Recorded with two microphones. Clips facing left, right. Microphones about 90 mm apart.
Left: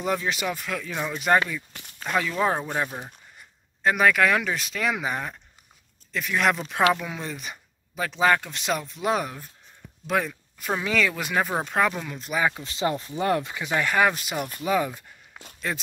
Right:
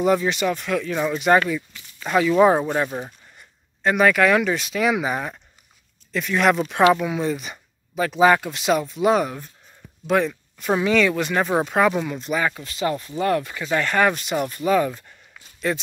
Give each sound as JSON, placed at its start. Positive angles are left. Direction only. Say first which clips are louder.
{"t": 0.0, "sound": "speech", "louder": "right 7 dB", "side_deg": 0}
{"t": 1.7, "sound": "a sound", "louder": "left 1 dB", "side_deg": 60}
{"t": 2.0, "sound": "speech", "louder": "right 8 dB", "side_deg": -5}
{"t": 12.5, "sound": "speech", "louder": "right 2 dB", "side_deg": 20}